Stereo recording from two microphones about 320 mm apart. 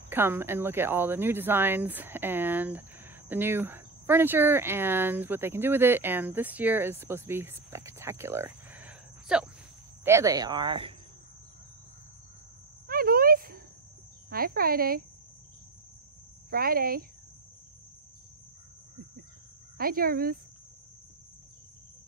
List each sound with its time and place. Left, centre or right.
0.1 s speech: centre
12.8 s a sound: right
14.3 s speech: right
16.4 s speech: right
19.8 s speech: right